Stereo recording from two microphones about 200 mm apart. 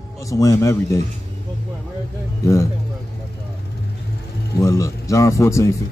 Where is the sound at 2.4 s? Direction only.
15° left (ahead or behind).